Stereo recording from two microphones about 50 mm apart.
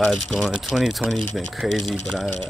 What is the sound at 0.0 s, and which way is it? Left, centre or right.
Speech, centre.